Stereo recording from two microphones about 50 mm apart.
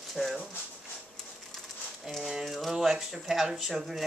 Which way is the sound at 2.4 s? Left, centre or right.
Centre.